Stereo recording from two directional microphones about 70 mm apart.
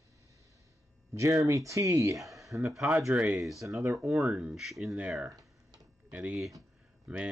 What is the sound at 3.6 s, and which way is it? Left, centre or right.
Speech, right.